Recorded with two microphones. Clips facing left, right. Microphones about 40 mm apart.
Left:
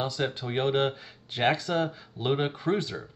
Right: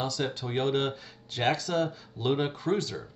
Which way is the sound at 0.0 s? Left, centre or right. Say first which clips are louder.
Left 1 dB; left.